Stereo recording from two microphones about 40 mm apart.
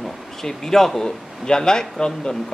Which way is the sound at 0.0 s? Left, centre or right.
Centre.